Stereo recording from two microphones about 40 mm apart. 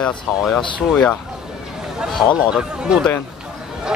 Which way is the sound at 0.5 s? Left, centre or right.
Left.